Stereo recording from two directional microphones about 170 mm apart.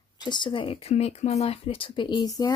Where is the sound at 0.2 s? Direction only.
25° left (ahead or behind).